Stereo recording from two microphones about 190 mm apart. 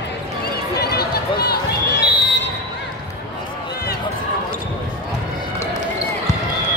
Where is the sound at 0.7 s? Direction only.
55° left (ahead or behind).